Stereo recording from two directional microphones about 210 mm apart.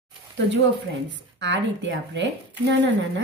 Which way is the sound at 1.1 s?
60° right (ahead or behind).